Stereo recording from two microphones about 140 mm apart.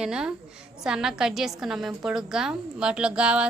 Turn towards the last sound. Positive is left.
turn(degrees=-5)  # may be behind; listen again after turning